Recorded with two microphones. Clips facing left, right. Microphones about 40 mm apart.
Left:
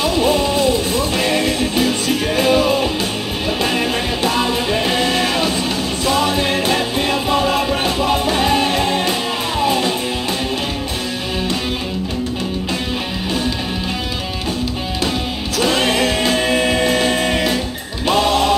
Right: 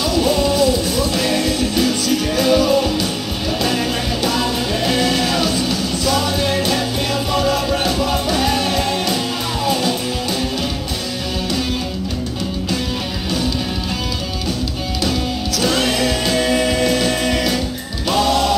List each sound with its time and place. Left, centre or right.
0.0 s music: left
15.0 s music: left